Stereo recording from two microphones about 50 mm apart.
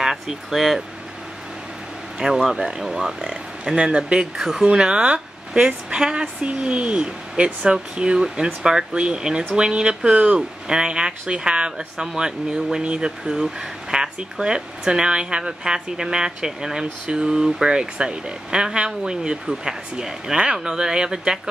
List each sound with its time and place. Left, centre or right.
0.0 s speech: centre
2.1 s speech: centre
3.7 s speech: centre